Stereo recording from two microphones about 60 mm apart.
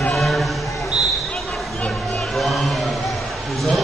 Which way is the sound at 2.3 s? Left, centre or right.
Centre.